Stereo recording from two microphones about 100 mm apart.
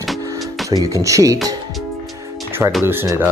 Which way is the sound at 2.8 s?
25° right (ahead or behind).